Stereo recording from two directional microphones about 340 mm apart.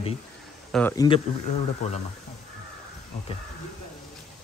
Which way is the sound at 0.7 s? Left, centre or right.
Centre.